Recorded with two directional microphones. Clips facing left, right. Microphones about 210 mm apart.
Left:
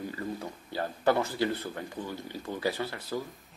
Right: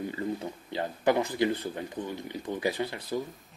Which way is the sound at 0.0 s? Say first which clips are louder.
Right 3 dB; 20° right (ahead or behind).